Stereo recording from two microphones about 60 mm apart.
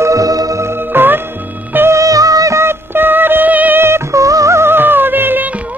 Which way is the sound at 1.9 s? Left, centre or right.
Right.